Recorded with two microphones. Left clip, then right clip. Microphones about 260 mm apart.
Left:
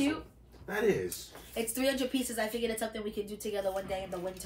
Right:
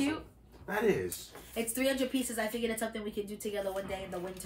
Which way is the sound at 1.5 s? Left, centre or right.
Centre.